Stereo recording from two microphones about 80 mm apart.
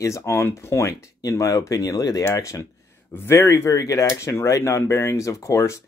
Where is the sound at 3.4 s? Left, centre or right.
Left.